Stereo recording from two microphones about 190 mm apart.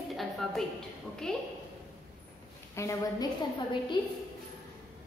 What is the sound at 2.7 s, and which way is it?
Speech, 15° left (ahead or behind).